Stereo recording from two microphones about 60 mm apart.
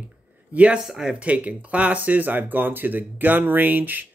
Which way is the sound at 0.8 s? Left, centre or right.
Centre.